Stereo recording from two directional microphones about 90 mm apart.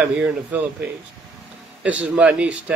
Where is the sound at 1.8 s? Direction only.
15° right (ahead or behind).